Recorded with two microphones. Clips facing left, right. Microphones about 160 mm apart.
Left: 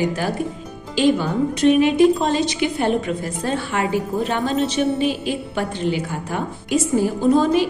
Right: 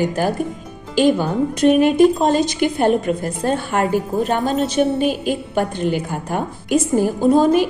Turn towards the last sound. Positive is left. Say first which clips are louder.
# right 2 dB
turn(degrees=-50)  # may be behind; listen again after turning